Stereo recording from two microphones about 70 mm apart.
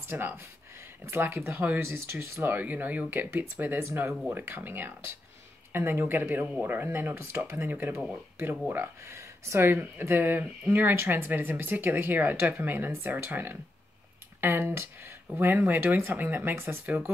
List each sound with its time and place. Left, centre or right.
0.1 s speech: right
3.8 s speech: right
10.4 s speech: centre
10.8 s speech: right